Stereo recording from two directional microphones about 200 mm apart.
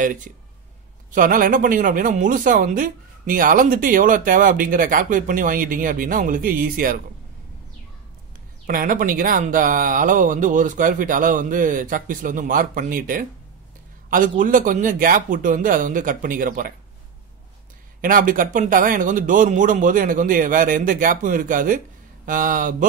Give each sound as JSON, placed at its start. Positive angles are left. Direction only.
{"t": 0.0, "sound": "speech", "side_deg": -40}
{"t": 8.6, "sound": "speech", "side_deg": -45}
{"t": 18.0, "sound": "speech", "side_deg": -45}